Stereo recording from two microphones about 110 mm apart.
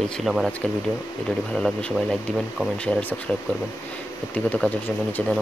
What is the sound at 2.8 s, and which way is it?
Speech, 15° left (ahead or behind).